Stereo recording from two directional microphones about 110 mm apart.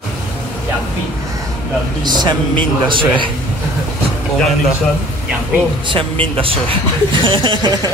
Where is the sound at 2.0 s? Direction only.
40° right (ahead or behind).